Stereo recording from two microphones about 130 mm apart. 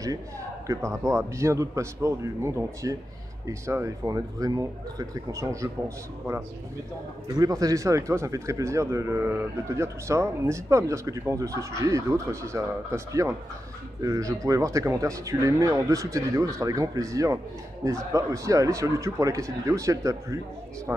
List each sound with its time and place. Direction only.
0.7 s speech: 25° right (ahead or behind)
7.3 s speech: 25° right (ahead or behind)